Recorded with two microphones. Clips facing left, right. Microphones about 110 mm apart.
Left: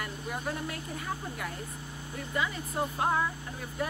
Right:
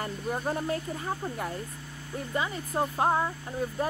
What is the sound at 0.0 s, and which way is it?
Speech, 35° right (ahead or behind).